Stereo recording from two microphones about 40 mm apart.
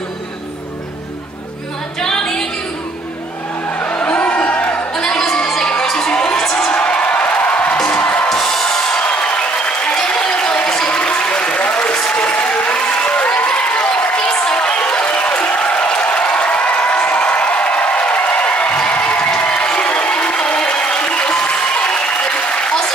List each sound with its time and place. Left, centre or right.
2.0 s music: centre
4.0 s music: left
4.4 s a sound: left
4.9 s music: centre
5.9 s a sound: centre
6.7 s music: left
7.7 s music: centre
8.0 s music: left
8.3 s music: centre
9.0 s applause: left
14.1 s a sound: centre
15.6 s applause: left
18.8 s crowd: left